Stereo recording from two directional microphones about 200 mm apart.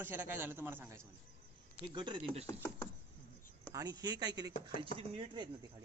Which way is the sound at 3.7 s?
20° right (ahead or behind).